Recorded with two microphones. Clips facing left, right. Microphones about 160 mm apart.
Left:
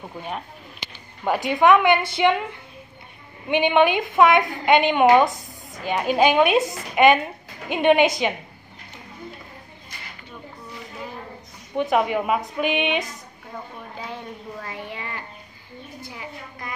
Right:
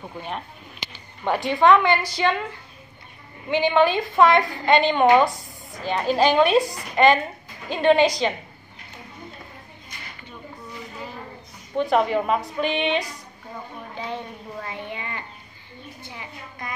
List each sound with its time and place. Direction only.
1.2 s a woman's voice: 5° left (ahead or behind)
1.6 s a woman's voice: 15° left (ahead or behind)
6.6 s a woman's voice: 20° left (ahead or behind)
11.9 s a woman's voice: 5° left (ahead or behind)
14.6 s a sound: centre (ahead or behind)